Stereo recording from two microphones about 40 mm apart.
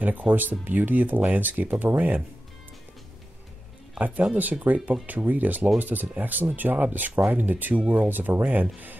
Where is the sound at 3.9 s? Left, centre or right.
Right.